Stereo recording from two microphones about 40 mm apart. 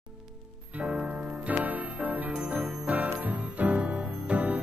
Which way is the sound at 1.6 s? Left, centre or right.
Right.